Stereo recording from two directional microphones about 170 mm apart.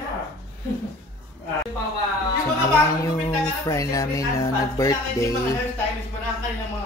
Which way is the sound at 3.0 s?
20° left (ahead or behind).